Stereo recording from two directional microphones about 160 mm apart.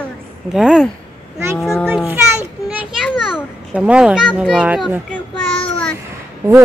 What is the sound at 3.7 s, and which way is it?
A child's voice, 5° right (ahead or behind).